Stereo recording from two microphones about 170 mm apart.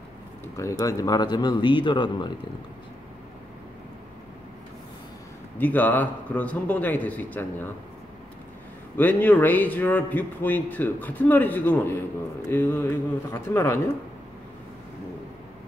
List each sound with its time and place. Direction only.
0.6 s speech: 20° left (ahead or behind)
5.6 s a man's voice: 10° left (ahead or behind)
8.9 s a man's voice: 10° left (ahead or behind)